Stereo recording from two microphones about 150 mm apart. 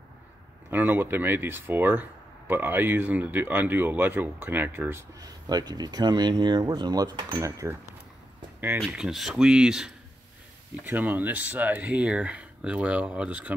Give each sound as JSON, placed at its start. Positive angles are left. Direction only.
{"t": 0.7, "sound": "speech", "side_deg": -15}
{"t": 5.5, "sound": "speech", "side_deg": -25}
{"t": 8.8, "sound": "speech", "side_deg": 0}